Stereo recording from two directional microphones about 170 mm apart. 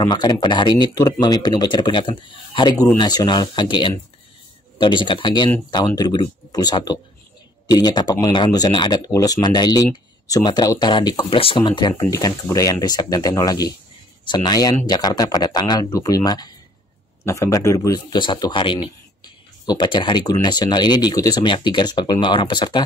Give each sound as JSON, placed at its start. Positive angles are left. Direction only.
{"t": 0.1, "sound": "speech", "side_deg": 25}